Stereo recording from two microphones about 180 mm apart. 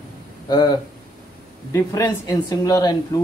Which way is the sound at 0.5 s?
20° left (ahead or behind).